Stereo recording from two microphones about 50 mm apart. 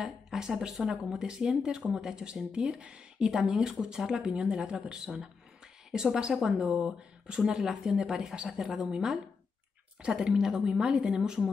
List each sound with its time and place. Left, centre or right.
0.0 s speech: centre
7.5 s speech: centre
10.2 s speech: centre